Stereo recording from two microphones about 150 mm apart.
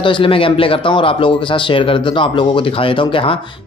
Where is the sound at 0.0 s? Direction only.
35° left (ahead or behind).